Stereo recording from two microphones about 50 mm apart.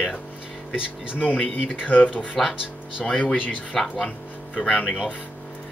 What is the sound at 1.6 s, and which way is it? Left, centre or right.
Speech, left.